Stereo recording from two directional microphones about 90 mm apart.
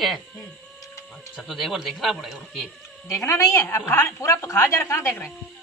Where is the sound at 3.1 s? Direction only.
30° left (ahead or behind).